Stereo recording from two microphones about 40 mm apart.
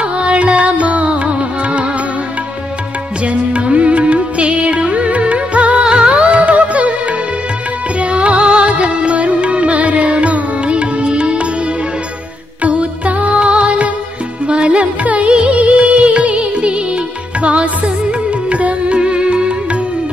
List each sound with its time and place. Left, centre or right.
0.0 s music: right
3.3 s music: right
8.0 s music: right
12.6 s music: right